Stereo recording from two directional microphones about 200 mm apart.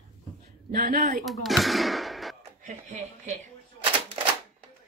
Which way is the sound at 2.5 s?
35° right (ahead or behind).